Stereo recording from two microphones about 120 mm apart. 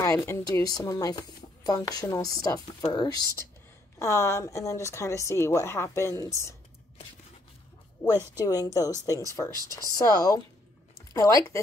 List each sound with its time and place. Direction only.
0.0 s a woman's voice: 25° left (ahead or behind)
8.0 s a woman's voice: 30° left (ahead or behind)